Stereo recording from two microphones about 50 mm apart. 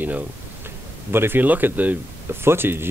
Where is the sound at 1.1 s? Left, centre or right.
Right.